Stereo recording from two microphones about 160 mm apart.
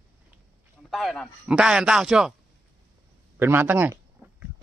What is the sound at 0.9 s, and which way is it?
A man's voice, centre (ahead or behind).